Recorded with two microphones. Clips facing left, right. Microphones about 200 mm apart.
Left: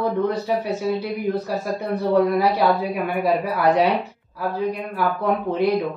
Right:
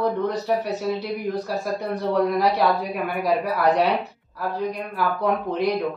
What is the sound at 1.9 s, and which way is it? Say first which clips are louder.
Speech: left 4 dB; centre (ahead or behind).